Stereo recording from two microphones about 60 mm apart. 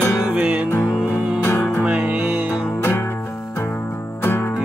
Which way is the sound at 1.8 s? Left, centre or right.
Centre.